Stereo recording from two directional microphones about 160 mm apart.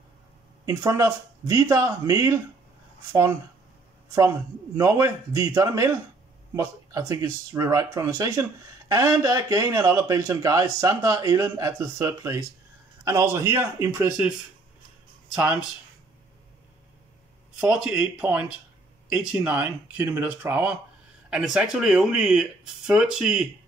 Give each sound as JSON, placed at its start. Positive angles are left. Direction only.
{"t": 0.7, "sound": "a man's voice", "side_deg": -20}
{"t": 4.7, "sound": "a man's voice", "side_deg": -20}
{"t": 17.6, "sound": "a man's voice", "side_deg": -5}